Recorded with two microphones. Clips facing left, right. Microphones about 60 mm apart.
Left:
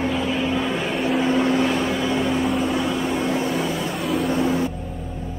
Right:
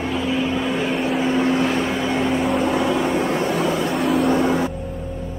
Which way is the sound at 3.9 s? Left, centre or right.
Centre.